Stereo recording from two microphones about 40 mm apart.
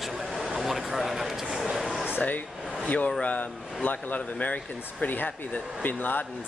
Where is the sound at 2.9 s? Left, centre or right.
Left.